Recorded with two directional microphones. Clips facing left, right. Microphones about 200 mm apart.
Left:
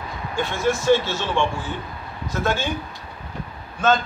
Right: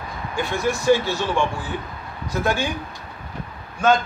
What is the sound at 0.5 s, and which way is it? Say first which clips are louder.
Speech: even; 15° right (ahead or behind).